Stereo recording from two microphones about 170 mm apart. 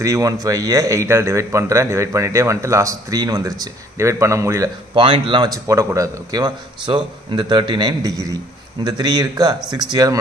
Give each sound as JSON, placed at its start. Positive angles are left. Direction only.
{"t": 0.0, "sound": "speech", "side_deg": -20}
{"t": 4.9, "sound": "speech", "side_deg": -30}